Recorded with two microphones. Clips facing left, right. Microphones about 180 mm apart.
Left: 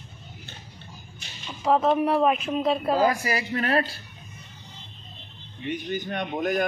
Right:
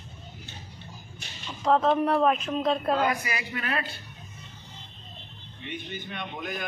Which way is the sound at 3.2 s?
35° left (ahead or behind).